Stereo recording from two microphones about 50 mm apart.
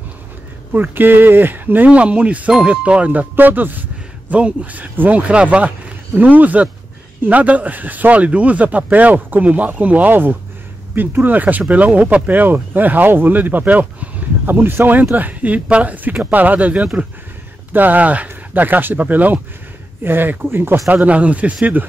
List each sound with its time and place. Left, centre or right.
0.8 s speech: right
1.9 s speech: right
5.3 s speech: right
20.9 s speech: right